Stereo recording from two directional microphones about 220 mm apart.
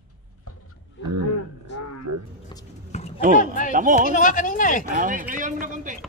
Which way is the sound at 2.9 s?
30° left (ahead or behind).